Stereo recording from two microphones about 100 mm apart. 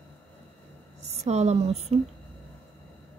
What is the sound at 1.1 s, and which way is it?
Speech, 90° right.